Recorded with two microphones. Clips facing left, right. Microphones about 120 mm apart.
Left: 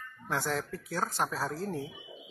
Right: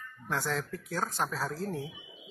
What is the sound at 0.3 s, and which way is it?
Speech, 10° left (ahead or behind).